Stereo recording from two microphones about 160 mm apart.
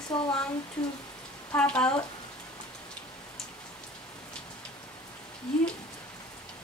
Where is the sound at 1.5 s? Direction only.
10° left (ahead or behind).